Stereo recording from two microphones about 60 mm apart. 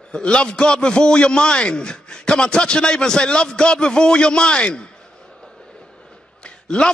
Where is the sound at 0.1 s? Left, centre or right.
Centre.